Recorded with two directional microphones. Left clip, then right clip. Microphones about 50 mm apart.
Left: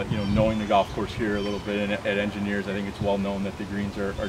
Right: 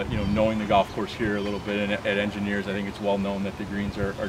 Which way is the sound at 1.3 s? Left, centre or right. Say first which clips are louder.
Left 2 dB; right.